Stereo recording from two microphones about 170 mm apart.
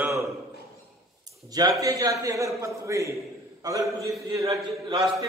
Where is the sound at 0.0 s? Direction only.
15° right (ahead or behind).